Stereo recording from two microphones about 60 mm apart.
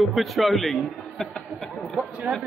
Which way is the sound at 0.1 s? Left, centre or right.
Centre.